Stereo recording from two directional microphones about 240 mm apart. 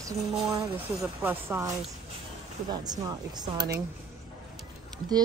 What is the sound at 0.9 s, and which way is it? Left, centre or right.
Speech, centre.